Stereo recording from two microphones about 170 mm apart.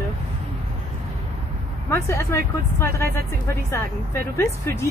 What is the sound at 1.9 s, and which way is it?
Speech, 15° left (ahead or behind).